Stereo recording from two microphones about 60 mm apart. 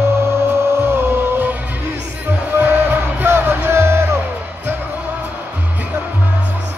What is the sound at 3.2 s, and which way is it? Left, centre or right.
Music, right.